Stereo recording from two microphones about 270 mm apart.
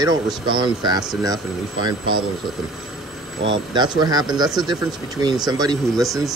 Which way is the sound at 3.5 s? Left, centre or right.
Centre.